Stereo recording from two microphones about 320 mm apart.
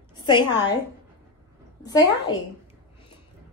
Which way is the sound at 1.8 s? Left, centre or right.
Centre.